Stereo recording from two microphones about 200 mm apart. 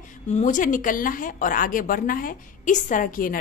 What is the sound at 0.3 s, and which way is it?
A woman's voice, 40° left (ahead or behind).